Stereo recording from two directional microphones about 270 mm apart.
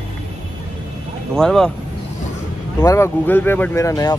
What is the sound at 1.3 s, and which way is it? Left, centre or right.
Speech, centre.